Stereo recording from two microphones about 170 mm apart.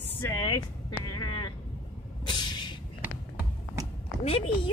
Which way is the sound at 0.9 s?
25° left (ahead or behind).